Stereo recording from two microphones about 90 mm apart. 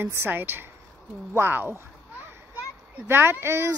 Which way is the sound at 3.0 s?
25° right (ahead or behind).